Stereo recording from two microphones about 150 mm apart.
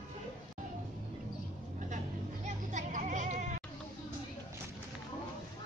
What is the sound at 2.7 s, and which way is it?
Goat, 55° right (ahead or behind).